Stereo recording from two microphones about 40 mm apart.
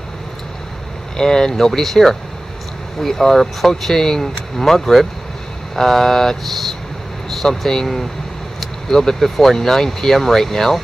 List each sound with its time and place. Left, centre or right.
1.1 s speech: centre